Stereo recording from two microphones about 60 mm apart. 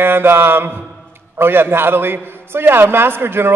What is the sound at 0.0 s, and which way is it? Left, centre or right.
A man's voice, right.